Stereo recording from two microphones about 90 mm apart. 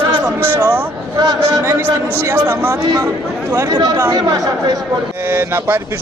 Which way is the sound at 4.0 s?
40° right (ahead or behind).